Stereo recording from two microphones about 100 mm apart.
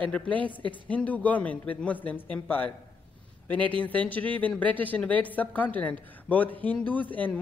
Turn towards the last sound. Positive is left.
turn(degrees=15)  # may be behind; listen again after turning